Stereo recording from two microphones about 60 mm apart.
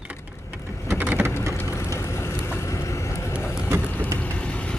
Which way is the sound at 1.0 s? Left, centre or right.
Right.